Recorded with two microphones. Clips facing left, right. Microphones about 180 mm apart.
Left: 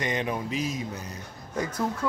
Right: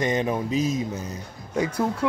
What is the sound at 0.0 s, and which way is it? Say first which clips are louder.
Speech: right 5 dB; 40° right (ahead or behind).